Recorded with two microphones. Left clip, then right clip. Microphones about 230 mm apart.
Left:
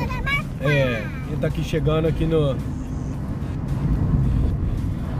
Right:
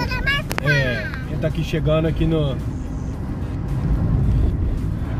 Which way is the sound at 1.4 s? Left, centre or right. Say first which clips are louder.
Even; centre.